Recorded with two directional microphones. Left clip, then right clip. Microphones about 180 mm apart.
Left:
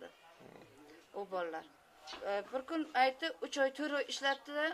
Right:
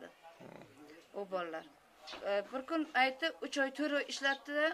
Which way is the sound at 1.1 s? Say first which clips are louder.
Even; 5° left (ahead or behind).